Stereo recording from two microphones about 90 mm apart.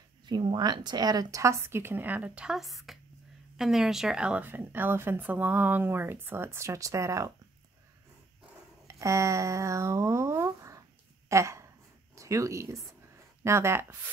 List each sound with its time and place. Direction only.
0.3 s speech: 60° right (ahead or behind); by 4.5 s 10° right (ahead or behind)
4.5 s speech: 20° right (ahead or behind)
8.8 s speech: 35° right (ahead or behind)
11.2 s a sound: 35° right (ahead or behind)
12.2 s speech: 35° right (ahead or behind)